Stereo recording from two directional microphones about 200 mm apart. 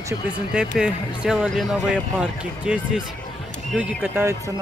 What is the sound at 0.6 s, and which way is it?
Speech, 5° right (ahead or behind).